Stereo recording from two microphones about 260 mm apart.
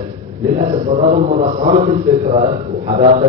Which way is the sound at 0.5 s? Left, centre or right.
Right.